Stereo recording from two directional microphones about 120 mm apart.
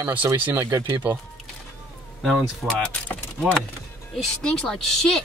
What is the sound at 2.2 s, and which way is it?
Speech, centre (ahead or behind).